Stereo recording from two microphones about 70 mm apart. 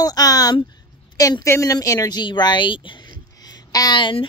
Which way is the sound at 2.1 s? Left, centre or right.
Left.